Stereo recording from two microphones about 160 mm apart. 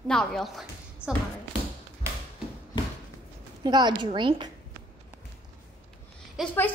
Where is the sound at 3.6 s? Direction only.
25° right (ahead or behind).